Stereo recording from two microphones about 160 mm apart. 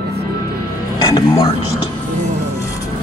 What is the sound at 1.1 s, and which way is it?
Music, 25° left (ahead or behind).